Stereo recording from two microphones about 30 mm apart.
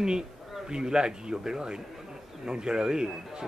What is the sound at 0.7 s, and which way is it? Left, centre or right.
A man's voice, right.